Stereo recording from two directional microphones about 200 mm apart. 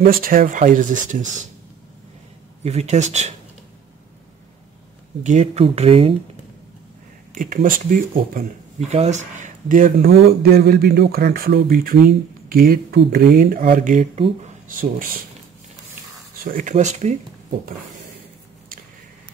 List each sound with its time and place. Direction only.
0.0 s speech: 45° right (ahead or behind)
2.6 s speech: 35° right (ahead or behind)
5.2 s speech: 35° right (ahead or behind)
7.3 s speech: 45° right (ahead or behind)
16.4 s speech: 40° right (ahead or behind)